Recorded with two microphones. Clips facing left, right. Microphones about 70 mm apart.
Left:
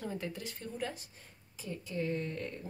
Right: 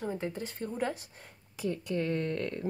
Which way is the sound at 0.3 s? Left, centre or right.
Right.